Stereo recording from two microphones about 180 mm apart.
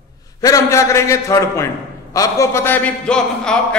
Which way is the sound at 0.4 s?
20° left (ahead or behind).